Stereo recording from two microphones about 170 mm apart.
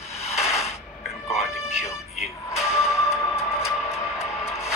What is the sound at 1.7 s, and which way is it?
Music, centre (ahead or behind).